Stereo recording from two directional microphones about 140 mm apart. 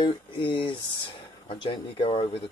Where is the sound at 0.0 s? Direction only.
35° left (ahead or behind).